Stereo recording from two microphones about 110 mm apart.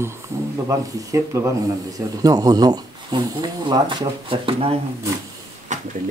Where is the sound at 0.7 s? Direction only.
30° right (ahead or behind); by 4.7 s 55° right (ahead or behind).